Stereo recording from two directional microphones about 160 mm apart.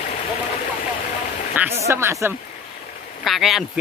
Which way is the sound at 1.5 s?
15° right (ahead or behind).